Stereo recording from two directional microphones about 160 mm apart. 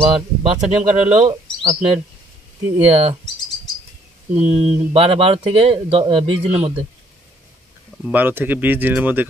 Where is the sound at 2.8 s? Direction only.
40° right (ahead or behind).